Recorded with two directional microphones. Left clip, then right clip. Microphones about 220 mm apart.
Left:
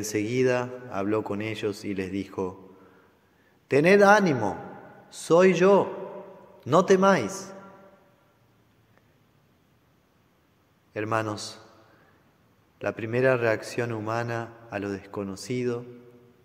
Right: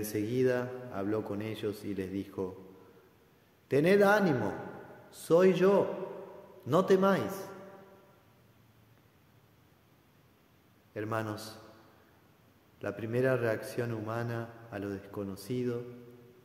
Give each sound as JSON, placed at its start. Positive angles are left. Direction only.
{"t": 0.0, "sound": "a man's voice", "side_deg": 25}
{"t": 3.6, "sound": "a man's voice", "side_deg": 25}
{"t": 10.9, "sound": "a man's voice", "side_deg": 25}
{"t": 12.7, "sound": "a man's voice", "side_deg": 25}